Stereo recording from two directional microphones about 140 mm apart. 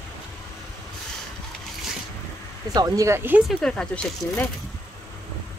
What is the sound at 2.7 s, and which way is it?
Speech, 25° right (ahead or behind).